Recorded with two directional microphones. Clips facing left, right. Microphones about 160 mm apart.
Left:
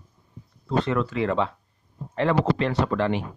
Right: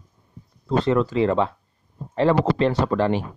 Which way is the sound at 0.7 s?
35° right (ahead or behind).